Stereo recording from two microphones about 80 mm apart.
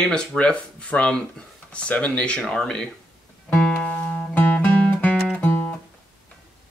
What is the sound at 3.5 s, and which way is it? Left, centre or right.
Music, centre.